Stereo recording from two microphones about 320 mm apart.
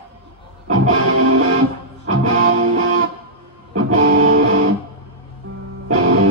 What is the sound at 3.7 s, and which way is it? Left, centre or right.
Music, right.